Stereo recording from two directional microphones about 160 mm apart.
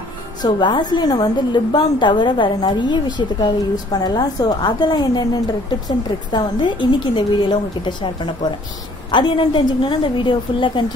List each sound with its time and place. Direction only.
0.4 s a woman's voice: 30° left (ahead or behind)